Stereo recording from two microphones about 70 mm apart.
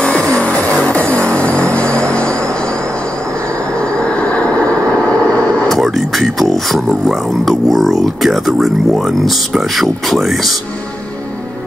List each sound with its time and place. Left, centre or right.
0.0 s music: centre
3.9 s a sound: centre
5.7 s music: centre
7.4 s speech: centre